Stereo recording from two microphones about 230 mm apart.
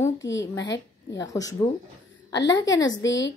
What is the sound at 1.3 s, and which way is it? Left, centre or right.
A woman's voice, centre.